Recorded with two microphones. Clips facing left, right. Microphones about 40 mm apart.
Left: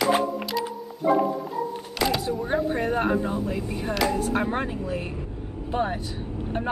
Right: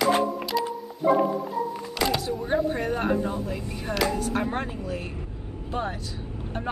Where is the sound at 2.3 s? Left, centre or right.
Centre; by 6.2 s left.